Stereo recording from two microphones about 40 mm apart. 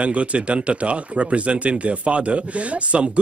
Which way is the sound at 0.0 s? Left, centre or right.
Right.